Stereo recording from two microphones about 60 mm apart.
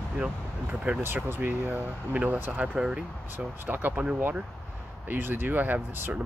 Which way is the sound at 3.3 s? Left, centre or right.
Right.